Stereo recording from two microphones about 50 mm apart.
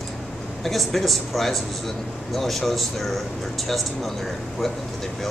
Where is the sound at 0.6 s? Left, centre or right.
Centre.